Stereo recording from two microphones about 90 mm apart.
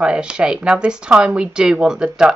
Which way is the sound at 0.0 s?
10° right (ahead or behind).